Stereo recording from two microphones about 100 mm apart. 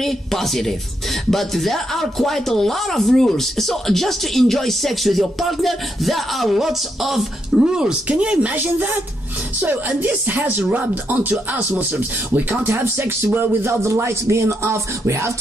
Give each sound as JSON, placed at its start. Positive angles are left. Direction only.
{"t": 0.0, "sound": "speech", "side_deg": 5}
{"t": 12.4, "sound": "speech", "side_deg": -20}